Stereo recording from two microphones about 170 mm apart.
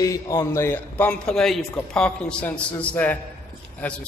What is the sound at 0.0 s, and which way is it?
A man's voice, 20° left (ahead or behind).